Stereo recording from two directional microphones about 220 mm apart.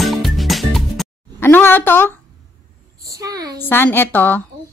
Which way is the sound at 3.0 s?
15° right (ahead or behind).